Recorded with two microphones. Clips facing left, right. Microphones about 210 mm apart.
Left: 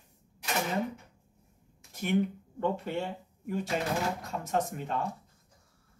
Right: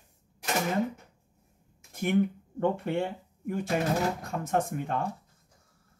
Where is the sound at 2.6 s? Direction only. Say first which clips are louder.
Right 4 dB; 50° right (ahead or behind).